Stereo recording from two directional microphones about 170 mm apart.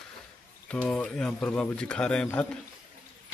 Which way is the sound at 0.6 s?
5° left (ahead or behind).